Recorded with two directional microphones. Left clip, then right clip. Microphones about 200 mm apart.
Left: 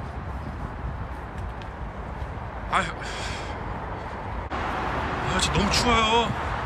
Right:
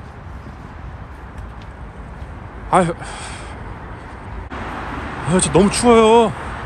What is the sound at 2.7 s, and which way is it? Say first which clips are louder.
Speech: right 10 dB; centre (ahead or behind).